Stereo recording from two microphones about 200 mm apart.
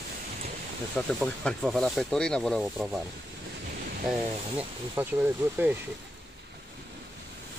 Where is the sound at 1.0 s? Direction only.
5° left (ahead or behind).